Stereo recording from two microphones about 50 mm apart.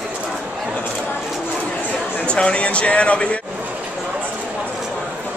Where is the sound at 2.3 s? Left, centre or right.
Left.